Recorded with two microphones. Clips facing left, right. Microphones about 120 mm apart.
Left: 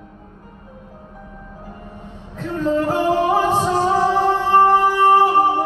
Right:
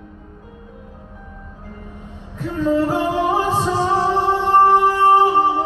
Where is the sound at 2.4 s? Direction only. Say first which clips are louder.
Right 1 dB; 10° right (ahead or behind).